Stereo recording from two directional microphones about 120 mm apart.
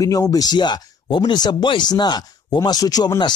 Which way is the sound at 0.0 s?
30° left (ahead or behind).